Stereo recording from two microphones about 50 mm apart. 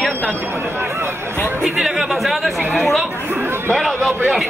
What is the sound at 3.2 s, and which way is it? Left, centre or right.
Speech, right.